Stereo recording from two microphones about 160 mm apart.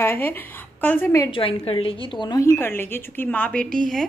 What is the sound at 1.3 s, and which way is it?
A woman's voice, 35° left (ahead or behind).